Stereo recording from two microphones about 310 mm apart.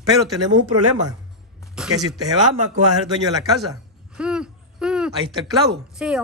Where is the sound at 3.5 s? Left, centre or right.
Centre.